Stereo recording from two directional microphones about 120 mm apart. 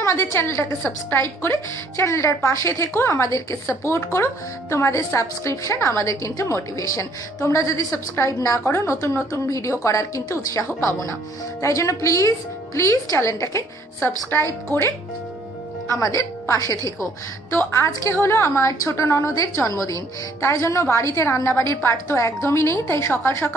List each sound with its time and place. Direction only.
0.0 s a woman's voice: 25° left (ahead or behind)
16.0 s a woman's voice: 25° left (ahead or behind)